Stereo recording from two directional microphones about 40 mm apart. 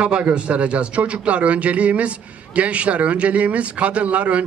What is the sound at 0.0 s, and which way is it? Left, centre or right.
A man's voice, right.